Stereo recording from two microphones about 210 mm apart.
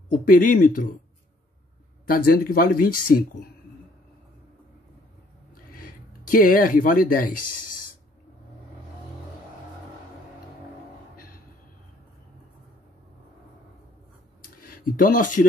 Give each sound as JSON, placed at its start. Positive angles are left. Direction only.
{"t": 0.1, "sound": "speech", "side_deg": 40}
{"t": 2.0, "sound": "speech", "side_deg": 45}
{"t": 5.5, "sound": "a sound", "side_deg": 45}
{"t": 14.6, "sound": "speech", "side_deg": 40}